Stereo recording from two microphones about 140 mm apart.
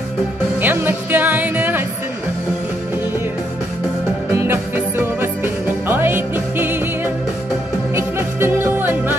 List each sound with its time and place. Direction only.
0.6 s music: 15° right (ahead or behind)
4.3 s music: 20° right (ahead or behind)
7.9 s music: 15° right (ahead or behind)